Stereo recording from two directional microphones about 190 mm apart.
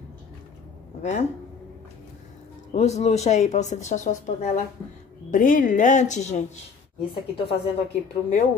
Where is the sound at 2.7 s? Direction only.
35° left (ahead or behind).